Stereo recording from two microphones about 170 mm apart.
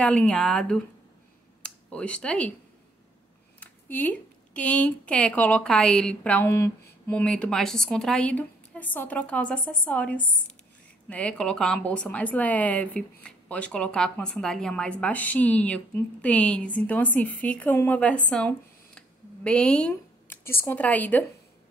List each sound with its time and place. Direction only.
0.0 s speech: 5° left (ahead or behind)
3.5 s speech: 10° left (ahead or behind)